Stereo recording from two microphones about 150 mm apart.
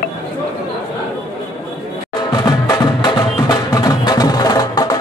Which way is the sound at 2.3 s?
25° left (ahead or behind).